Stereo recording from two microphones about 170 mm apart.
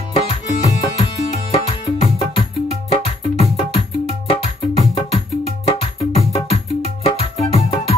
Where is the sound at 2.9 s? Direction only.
35° left (ahead or behind).